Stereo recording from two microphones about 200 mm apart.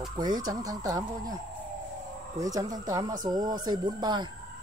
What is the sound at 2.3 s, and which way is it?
Speech, 15° right (ahead or behind).